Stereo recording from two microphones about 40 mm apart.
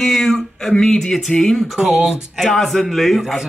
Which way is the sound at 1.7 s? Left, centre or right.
Centre.